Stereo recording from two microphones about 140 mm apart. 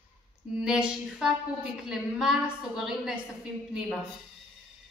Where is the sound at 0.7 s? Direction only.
5° right (ahead or behind).